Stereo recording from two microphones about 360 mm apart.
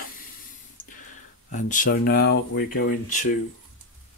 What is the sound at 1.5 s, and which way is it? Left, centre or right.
Speech, left.